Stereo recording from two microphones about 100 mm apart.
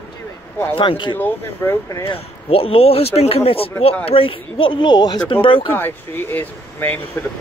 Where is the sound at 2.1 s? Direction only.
70° left (ahead or behind).